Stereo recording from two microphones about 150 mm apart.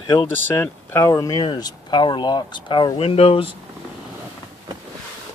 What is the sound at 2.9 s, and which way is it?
Speech, 40° left (ahead or behind).